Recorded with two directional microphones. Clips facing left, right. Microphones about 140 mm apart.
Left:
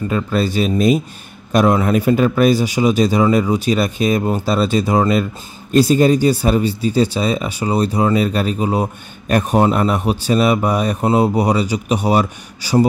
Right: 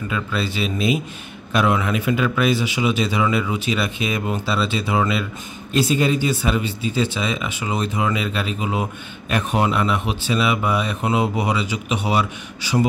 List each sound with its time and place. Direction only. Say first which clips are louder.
0.1 s speech: left 7 dB; 40° left (ahead or behind)